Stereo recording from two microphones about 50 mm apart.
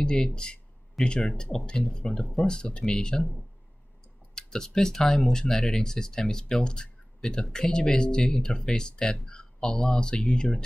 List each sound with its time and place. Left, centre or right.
0.0 s speech: centre
1.0 s speech: centre
1.3 s speech: centre
4.4 s speech: centre